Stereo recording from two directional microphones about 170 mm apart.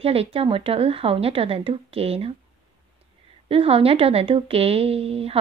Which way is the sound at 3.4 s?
35° right (ahead or behind).